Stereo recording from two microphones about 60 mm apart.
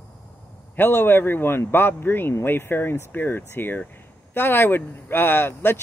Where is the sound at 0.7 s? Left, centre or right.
Left.